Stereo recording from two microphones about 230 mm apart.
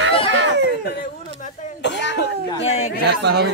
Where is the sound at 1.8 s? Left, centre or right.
Left.